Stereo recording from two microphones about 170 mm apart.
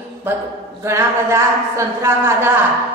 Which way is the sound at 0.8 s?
15° right (ahead or behind).